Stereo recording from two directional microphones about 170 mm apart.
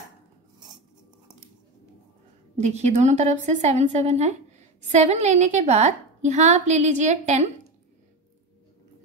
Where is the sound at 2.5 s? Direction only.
40° right (ahead or behind).